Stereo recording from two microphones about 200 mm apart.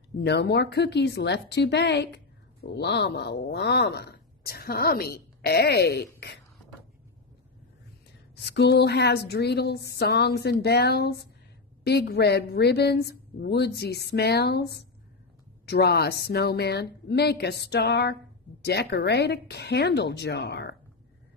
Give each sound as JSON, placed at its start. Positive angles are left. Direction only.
{"t": 0.2, "sound": "a woman's voice", "side_deg": 55}
{"t": 8.4, "sound": "a woman's voice", "side_deg": 55}